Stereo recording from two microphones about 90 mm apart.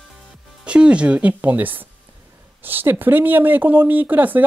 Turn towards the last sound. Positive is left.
turn(degrees=-20)  # may be behind; listen again after turning